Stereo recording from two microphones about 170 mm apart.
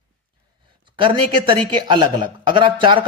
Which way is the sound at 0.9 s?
30° right (ahead or behind).